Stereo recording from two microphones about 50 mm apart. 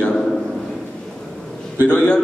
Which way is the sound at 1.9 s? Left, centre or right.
Left.